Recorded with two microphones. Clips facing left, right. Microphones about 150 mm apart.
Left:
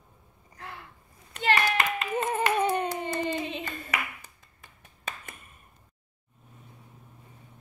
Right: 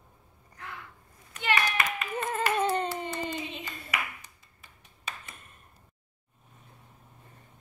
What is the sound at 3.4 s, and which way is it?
Clapping, 55° left (ahead or behind).